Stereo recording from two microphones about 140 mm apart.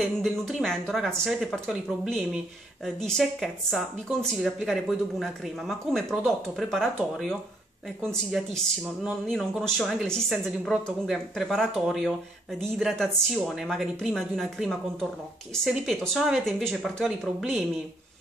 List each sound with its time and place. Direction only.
0.0 s speech: centre (ahead or behind)